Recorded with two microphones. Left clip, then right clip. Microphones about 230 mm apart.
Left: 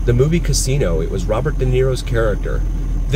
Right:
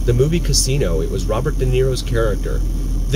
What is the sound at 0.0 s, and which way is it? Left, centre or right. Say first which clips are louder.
Speech: left 1 dB; centre.